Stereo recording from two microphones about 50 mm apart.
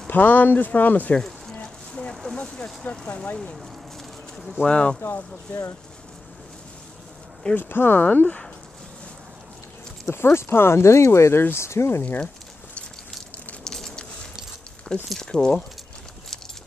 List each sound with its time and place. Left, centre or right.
0.1 s speech: left
1.5 s a sound: centre
2.3 s speech: centre
4.4 s speech: centre
4.6 s speech: left
5.5 s speech: left
7.5 s speech: left
8.1 s speech: left
10.0 s speech: left
13.7 s a sound: centre
14.9 s speech: centre
15.2 s speech: centre